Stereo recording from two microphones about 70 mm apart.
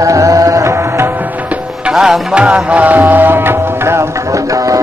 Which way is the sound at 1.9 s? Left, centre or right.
Centre.